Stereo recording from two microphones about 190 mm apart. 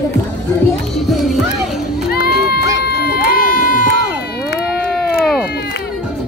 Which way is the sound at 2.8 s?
55° left (ahead or behind).